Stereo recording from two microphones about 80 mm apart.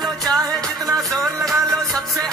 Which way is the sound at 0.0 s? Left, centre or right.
Centre.